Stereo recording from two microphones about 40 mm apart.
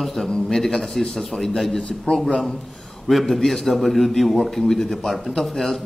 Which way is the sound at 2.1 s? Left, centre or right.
Centre.